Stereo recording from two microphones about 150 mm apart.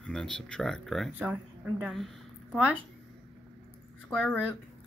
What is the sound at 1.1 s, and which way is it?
Speech, 10° right (ahead or behind).